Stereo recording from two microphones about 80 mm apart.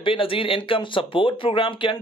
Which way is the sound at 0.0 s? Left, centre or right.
Left.